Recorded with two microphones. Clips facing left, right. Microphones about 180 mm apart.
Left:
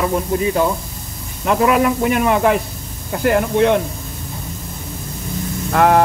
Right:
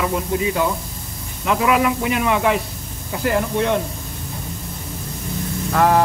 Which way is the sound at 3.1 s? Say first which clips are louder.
Left 4 dB; 55° left (ahead or behind).